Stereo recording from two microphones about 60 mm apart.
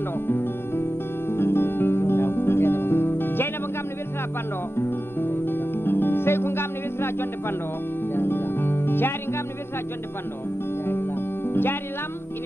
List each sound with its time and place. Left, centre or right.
0.3 s music: left
4.7 s music: left
10.9 s music: left